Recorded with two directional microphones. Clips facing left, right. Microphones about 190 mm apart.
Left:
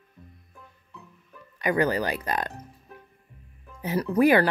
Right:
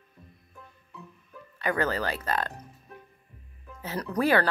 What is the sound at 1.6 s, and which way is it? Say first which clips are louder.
Speech: left 4 dB; 15° left (ahead or behind).